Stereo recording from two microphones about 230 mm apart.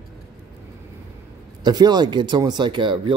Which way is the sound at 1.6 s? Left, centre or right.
Centre.